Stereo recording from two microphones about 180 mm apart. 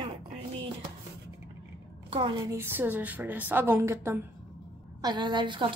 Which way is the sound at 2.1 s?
25° right (ahead or behind).